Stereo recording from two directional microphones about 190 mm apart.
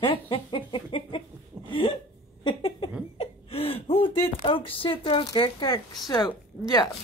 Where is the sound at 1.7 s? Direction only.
25° left (ahead or behind).